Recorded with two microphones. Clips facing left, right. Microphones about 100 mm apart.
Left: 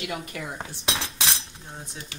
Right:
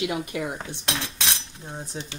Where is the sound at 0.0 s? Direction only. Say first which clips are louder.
Right 5 dB; 20° right (ahead or behind).